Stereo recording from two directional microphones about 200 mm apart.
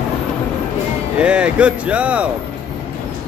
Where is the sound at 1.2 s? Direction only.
5° right (ahead or behind).